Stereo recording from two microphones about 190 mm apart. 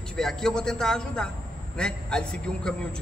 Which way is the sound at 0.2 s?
Centre (ahead or behind).